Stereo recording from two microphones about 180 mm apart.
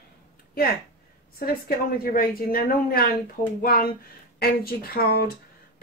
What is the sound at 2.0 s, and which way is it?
A woman's voice, 55° left (ahead or behind).